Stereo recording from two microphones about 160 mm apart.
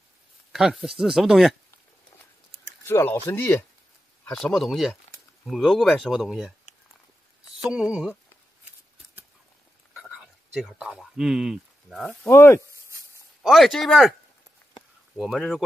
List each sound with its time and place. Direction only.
0.5 s speech: 5° right (ahead or behind)
2.9 s speech: 15° left (ahead or behind)
4.2 s speech: 5° left (ahead or behind)
7.7 s speech: 5° right (ahead or behind)
9.9 s speech: 5° right (ahead or behind)
12.3 s speech: 20° left (ahead or behind)
13.4 s speech: centre (ahead or behind)
15.1 s speech: centre (ahead or behind)